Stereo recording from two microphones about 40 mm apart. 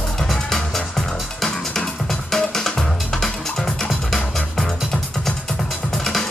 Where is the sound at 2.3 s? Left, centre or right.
Centre.